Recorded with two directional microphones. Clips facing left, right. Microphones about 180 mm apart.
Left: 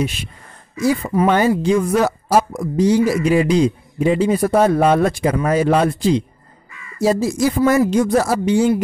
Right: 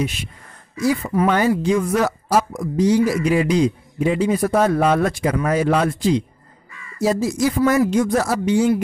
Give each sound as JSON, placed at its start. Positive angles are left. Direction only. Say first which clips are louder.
{"t": 0.7, "sound": "a woman's voice", "louder": "left 2 dB", "side_deg": 25}